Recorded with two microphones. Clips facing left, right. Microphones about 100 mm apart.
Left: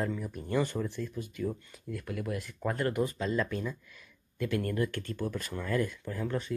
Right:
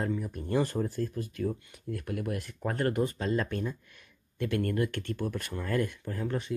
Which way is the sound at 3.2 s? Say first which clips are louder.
Right 1 dB; 45° right (ahead or behind).